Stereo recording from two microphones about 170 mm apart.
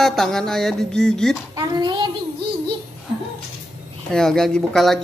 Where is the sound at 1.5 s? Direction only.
25° right (ahead or behind).